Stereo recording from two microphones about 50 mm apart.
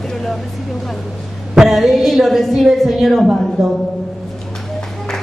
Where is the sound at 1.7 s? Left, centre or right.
Centre.